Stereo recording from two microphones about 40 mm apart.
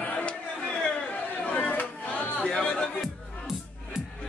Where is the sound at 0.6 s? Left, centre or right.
Centre.